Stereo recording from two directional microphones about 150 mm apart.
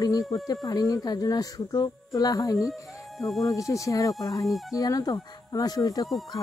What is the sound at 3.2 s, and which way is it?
Speech, centre (ahead or behind).